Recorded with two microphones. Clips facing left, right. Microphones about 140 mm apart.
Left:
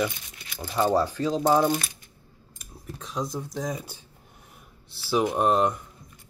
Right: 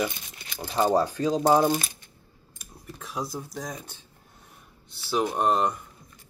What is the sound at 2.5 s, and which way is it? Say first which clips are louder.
Speech: left 2 dB; 5° right (ahead or behind).